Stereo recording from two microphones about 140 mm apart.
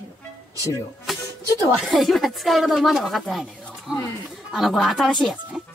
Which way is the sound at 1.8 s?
Centre (ahead or behind).